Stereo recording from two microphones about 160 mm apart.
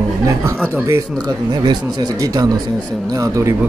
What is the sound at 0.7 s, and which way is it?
Speech, 15° right (ahead or behind).